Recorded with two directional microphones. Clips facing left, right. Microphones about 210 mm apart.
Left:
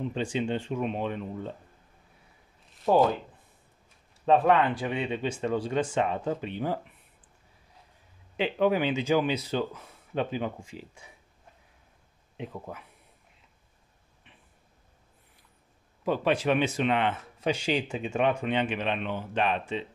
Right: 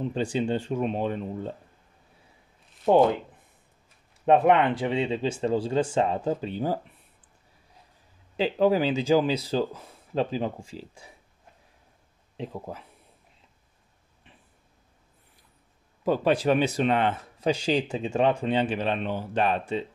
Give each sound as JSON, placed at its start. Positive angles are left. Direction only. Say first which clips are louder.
{"t": 0.1, "sound": "speech", "louder": "right 3 dB", "side_deg": -35}
{"t": 2.9, "sound": "speech", "louder": "right 3 dB", "side_deg": -25}
{"t": 4.3, "sound": "speech", "louder": "right 2 dB", "side_deg": -25}
{"t": 8.4, "sound": "speech", "louder": "right 3 dB", "side_deg": -35}
{"t": 12.4, "sound": "speech", "louder": "right 3 dB", "side_deg": -35}
{"t": 16.1, "sound": "speech", "louder": "right 3 dB", "side_deg": -40}